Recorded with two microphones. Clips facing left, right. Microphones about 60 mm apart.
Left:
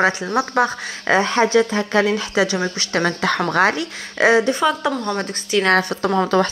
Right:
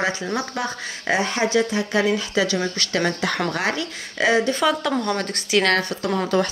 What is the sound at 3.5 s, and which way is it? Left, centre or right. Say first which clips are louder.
Speech: left 7 dB; left.